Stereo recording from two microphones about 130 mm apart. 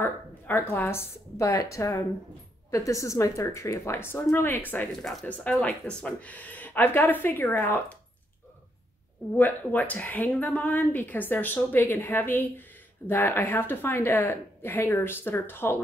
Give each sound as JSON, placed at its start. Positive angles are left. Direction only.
{"t": 0.0, "sound": "a woman's voice", "side_deg": 15}
{"t": 9.4, "sound": "a woman's voice", "side_deg": 15}